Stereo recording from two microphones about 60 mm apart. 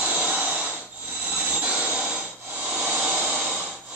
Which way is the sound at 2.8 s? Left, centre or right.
Right.